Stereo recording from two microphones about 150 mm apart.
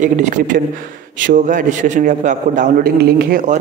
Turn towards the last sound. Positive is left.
turn(degrees=-85)